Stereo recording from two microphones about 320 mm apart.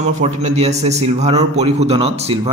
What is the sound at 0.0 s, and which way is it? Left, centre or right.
Speech, right.